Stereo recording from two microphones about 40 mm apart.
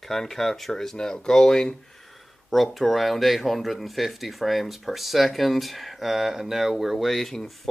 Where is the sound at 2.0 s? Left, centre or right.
Centre.